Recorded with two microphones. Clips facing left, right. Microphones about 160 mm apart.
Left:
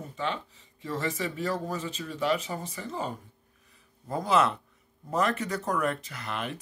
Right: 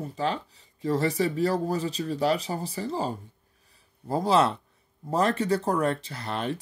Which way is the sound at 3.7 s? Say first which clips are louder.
Right 5 dB; 30° right (ahead or behind).